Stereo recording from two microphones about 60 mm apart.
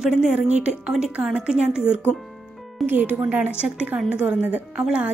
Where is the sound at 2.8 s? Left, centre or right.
Right.